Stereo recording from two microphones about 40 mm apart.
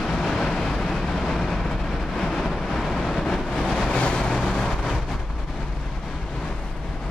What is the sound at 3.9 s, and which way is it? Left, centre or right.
Vehicle, left.